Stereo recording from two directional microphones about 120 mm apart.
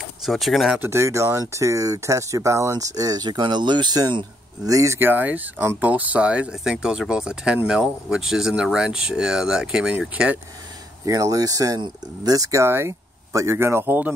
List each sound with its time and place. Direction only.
0.2 s speech: centre (ahead or behind)
0.7 s speech: 20° right (ahead or behind)
4.7 s speech: 20° right (ahead or behind)
11.1 s speech: 30° right (ahead or behind)